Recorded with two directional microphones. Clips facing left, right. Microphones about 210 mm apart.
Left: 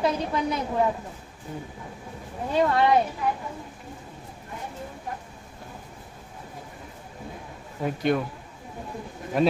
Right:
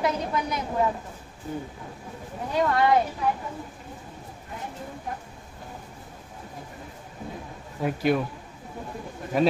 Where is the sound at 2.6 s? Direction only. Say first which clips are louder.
Left 1 dB; 25° left (ahead or behind).